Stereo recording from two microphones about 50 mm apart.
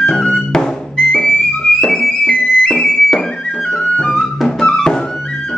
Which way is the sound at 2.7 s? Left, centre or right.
Centre.